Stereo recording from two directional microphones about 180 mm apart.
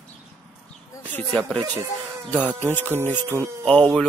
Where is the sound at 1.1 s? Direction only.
5° left (ahead or behind).